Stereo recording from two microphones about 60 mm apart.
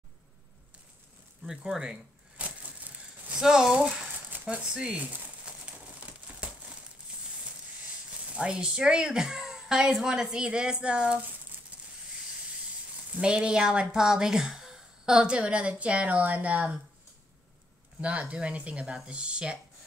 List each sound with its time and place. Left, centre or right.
1.4 s speech: centre
2.3 s a sound: right
3.3 s speech: centre
8.4 s speech: centre
11.7 s a sound: right
13.2 s speech: centre
18.0 s speech: right